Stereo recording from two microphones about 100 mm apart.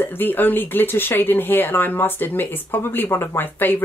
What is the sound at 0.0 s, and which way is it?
A woman's voice, 20° left (ahead or behind).